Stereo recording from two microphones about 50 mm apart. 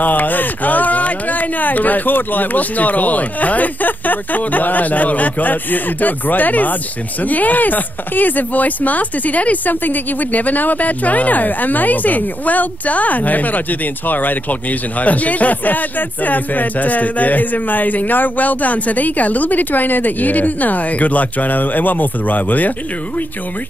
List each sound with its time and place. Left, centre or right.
0.0 s speech: left